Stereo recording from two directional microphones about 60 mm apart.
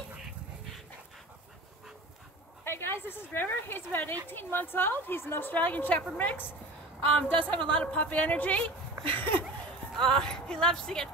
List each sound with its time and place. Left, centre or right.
0.2 s dog: centre
2.6 s a woman's voice: left
5.5 s a woman's voice: left
7.1 s a woman's voice: left
9.9 s speech: centre